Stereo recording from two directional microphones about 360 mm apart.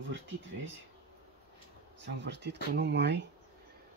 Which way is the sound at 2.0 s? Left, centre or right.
Right.